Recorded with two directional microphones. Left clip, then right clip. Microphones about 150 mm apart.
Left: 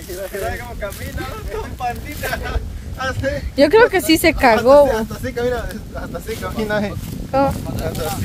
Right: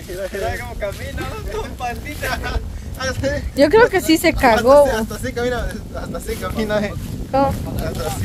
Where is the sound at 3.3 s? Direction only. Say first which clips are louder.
Left 1 dB; centre (ahead or behind).